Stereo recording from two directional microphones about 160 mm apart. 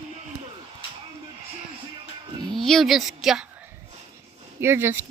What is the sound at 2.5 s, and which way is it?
Speech, centre (ahead or behind).